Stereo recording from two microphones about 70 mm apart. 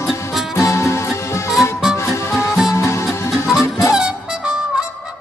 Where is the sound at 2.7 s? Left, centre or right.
Left.